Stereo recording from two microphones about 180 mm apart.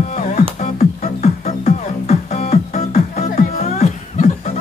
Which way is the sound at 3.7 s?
40° left (ahead or behind).